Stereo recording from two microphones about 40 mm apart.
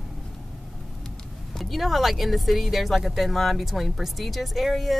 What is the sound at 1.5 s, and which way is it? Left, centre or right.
Speech, centre.